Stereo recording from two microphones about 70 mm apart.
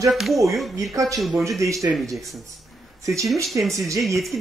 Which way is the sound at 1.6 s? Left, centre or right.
Right.